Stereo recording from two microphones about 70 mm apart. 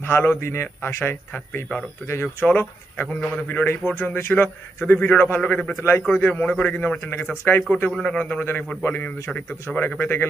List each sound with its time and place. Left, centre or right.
0.0 s a man's voice: left
5.4 s a man's voice: centre
5.8 s a man's voice: left
6.1 s a man's voice: left
7.1 s a man's voice: left
7.9 s a man's voice: centre
8.2 s speech: left